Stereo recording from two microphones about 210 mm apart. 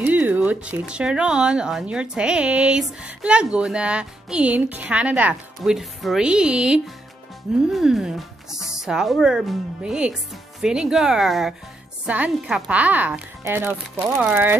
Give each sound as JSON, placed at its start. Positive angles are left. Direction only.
{"t": 0.0, "sound": "a woman's voice", "side_deg": -10}